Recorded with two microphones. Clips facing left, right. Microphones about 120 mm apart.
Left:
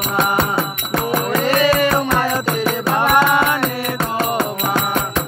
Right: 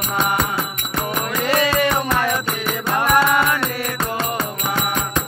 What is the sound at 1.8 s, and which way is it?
Music, 35° left (ahead or behind).